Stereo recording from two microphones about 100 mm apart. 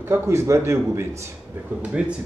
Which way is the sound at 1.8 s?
10° right (ahead or behind).